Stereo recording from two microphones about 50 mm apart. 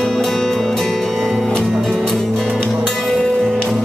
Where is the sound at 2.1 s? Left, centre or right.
Centre.